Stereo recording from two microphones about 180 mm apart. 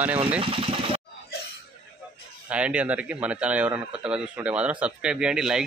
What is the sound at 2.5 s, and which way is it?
A man's voice, 5° right (ahead or behind).